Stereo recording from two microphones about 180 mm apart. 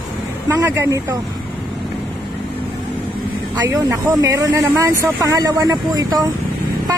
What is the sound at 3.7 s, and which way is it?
Speech, 15° right (ahead or behind).